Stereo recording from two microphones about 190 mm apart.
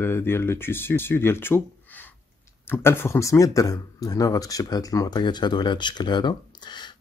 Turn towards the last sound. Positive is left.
turn(degrees=25)  # may be behind; listen again after turning